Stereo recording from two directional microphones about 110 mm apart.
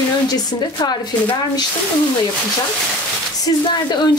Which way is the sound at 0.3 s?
40° left (ahead or behind).